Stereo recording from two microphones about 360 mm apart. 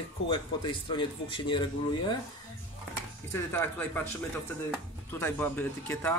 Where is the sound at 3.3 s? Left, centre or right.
Centre.